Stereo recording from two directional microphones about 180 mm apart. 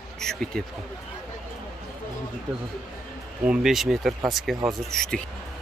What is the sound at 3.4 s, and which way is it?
Speech, 5° right (ahead or behind).